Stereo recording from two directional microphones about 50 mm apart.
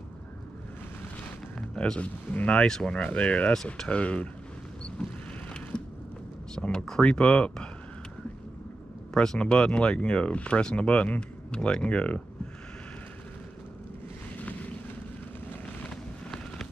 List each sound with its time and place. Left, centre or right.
2.0 s speech: left
2.6 s speech: centre
3.0 s speech: left
5.7 s creak: centre
6.6 s speech: centre
9.1 s speech: centre